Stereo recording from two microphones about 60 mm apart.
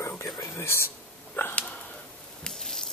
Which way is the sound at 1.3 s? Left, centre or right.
Left.